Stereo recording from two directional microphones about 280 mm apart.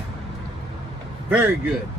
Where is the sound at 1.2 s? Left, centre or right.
Centre.